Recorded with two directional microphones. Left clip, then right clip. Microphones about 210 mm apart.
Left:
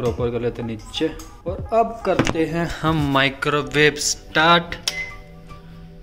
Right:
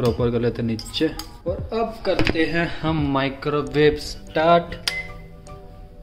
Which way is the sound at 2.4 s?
10° left (ahead or behind).